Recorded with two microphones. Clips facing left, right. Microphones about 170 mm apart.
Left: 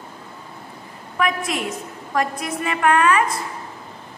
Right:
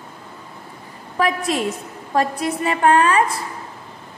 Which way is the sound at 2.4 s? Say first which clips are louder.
Right 3 dB; 30° right (ahead or behind).